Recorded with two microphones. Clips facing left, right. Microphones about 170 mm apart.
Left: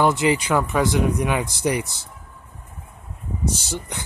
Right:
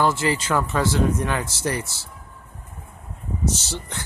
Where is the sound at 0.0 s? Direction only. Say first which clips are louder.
Left 3 dB; 20° left (ahead or behind).